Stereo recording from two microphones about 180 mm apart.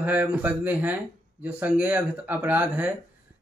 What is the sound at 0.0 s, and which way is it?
Speech, 10° right (ahead or behind).